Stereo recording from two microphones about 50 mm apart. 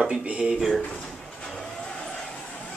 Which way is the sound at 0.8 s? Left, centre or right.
Centre.